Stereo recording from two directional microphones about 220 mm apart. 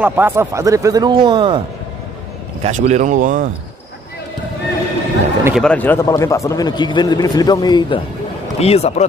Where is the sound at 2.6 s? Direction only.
30° right (ahead or behind).